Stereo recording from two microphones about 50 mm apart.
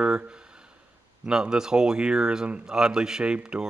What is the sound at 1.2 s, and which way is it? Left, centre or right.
Speech, centre.